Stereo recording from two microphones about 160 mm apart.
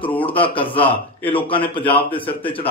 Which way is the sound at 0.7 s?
10° left (ahead or behind).